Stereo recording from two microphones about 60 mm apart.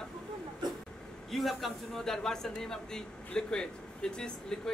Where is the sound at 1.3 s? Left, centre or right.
Centre.